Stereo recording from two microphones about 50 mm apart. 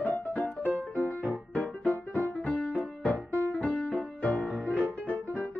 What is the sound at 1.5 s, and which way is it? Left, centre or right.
Music, left.